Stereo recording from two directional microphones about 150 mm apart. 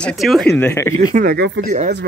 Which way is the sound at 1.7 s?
50° right (ahead or behind).